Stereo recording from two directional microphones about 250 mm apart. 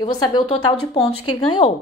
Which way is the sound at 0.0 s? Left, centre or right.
Centre.